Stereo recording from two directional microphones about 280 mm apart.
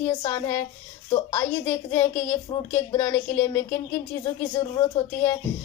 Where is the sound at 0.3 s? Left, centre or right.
Centre.